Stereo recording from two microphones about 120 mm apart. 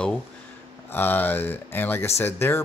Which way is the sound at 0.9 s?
15° left (ahead or behind).